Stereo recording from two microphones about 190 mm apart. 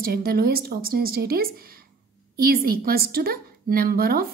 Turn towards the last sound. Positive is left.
turn(degrees=-50)  # may be behind; listen again after turning